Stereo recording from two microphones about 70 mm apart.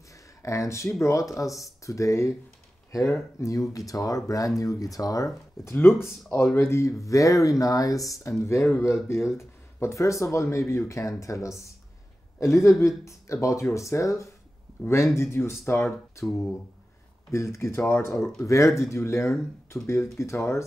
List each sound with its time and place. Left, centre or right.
0.1 s a sound: left
1.0 s speech: left
3.3 s speech: left
5.7 s speech: left
17.3 s speech: left